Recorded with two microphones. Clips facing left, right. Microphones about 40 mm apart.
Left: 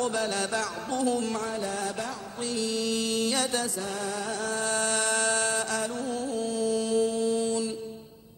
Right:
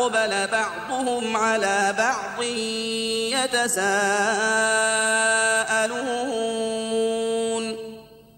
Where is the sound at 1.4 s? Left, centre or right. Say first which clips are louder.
Right 10 dB; right.